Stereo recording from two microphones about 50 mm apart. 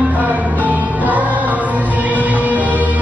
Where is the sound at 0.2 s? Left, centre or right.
Right.